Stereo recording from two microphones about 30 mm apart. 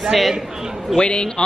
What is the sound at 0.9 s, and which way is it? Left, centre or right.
Speech, left.